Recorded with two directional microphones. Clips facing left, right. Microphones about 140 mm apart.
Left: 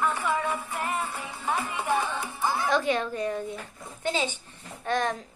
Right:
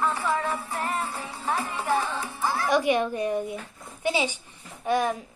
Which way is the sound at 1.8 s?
20° left (ahead or behind).